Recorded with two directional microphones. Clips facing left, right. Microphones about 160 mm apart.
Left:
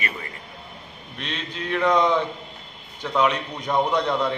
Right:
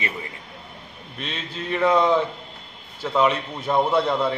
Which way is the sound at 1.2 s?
5° right (ahead or behind).